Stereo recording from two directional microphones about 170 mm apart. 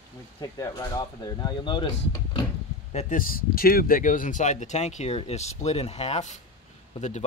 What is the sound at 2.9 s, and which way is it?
Speech, 45° left (ahead or behind).